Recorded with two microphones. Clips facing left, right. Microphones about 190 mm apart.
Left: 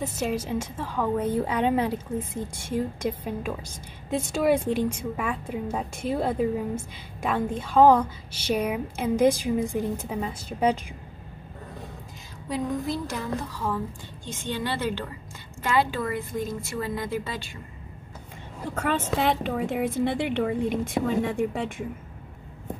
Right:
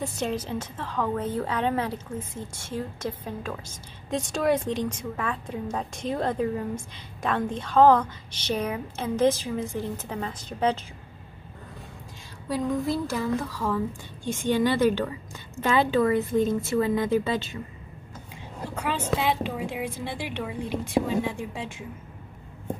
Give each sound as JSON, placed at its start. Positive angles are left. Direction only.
{"t": 0.0, "sound": "a woman's voice", "side_deg": 10}
{"t": 12.4, "sound": "a woman's voice", "side_deg": 0}
{"t": 13.4, "sound": "a woman's voice", "side_deg": 15}
{"t": 14.2, "sound": "a woman's voice", "side_deg": -15}
{"t": 19.1, "sound": "a woman's voice", "side_deg": 50}